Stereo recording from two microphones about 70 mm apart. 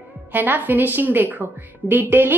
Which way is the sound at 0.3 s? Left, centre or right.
Right.